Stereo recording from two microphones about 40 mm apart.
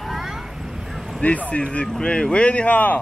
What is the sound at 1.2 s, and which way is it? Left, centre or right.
Speech, left.